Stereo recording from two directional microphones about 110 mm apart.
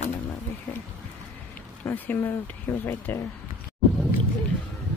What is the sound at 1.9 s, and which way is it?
Speech, 20° left (ahead or behind).